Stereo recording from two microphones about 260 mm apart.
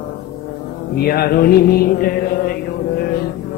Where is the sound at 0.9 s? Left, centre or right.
Left.